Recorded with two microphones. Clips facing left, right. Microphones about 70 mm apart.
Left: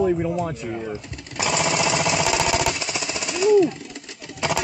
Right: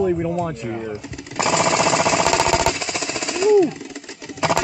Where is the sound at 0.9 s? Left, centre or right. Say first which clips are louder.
Right 2 dB; centre.